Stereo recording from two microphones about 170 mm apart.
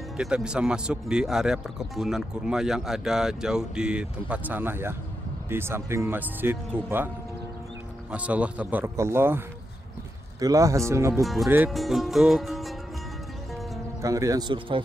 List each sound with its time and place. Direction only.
0.2 s speech: 5° right (ahead or behind)
8.1 s speech: 10° right (ahead or behind)
10.4 s speech: 20° right (ahead or behind)
11.7 s speech: centre (ahead or behind)
14.0 s speech: 20° right (ahead or behind)